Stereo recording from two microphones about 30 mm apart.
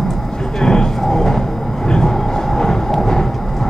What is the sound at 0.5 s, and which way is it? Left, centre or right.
Vehicle, centre.